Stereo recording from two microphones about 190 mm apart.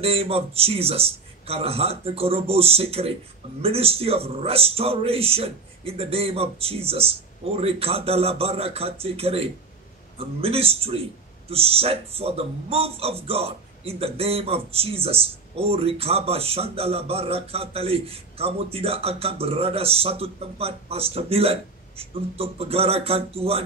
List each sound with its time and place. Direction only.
0.0 s a man's voice: 30° right (ahead or behind)